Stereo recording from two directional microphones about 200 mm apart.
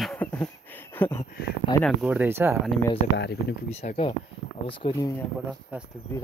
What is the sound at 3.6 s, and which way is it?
Speech, 35° left (ahead or behind).